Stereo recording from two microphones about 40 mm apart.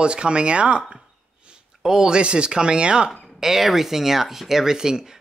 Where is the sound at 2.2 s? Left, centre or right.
Right.